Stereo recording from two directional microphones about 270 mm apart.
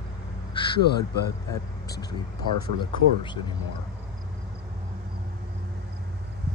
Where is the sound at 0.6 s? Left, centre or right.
Centre.